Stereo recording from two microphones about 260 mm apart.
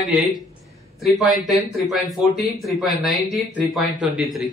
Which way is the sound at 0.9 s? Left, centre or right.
Centre.